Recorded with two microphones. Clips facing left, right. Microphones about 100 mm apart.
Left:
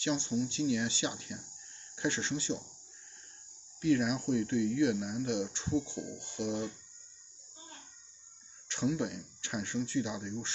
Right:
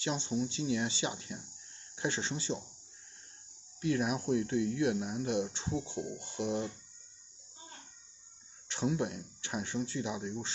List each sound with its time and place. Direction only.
0.0 s speech: 35° right (ahead or behind)
3.8 s speech: 30° right (ahead or behind)
8.6 s speech: 35° right (ahead or behind)
9.9 s speech: 25° right (ahead or behind)